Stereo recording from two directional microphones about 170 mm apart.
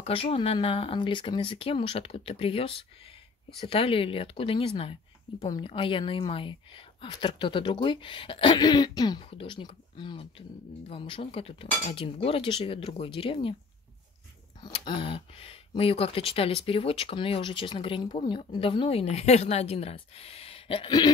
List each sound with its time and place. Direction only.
0.0 s a woman's voice: 35° left (ahead or behind)
14.6 s speech: 30° left (ahead or behind)